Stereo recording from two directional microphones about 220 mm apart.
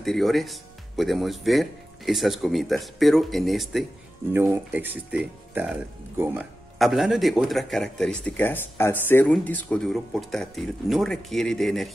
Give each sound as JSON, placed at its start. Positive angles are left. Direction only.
{"t": 0.0, "sound": "speech", "side_deg": 0}